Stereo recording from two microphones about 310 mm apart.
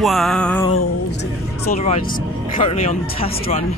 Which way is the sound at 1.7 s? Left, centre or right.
Left.